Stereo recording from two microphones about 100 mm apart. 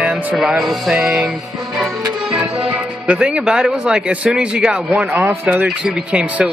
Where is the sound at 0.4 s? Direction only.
Centre (ahead or behind).